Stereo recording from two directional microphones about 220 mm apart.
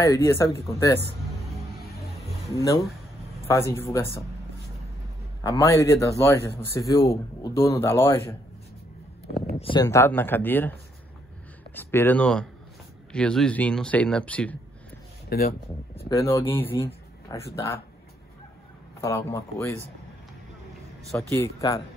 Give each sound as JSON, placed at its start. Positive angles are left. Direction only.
{"t": 0.0, "sound": "a man's voice", "side_deg": 15}
{"t": 2.5, "sound": "a man's voice", "side_deg": 15}
{"t": 5.4, "sound": "a man's voice", "side_deg": 15}
{"t": 9.6, "sound": "speech", "side_deg": 25}
{"t": 9.8, "sound": "a man's voice", "side_deg": 10}
{"t": 15.2, "sound": "speech", "side_deg": 45}
{"t": 16.1, "sound": "speech", "side_deg": 15}
{"t": 18.9, "sound": "a man's voice", "side_deg": 10}
{"t": 21.2, "sound": "a man's voice", "side_deg": 15}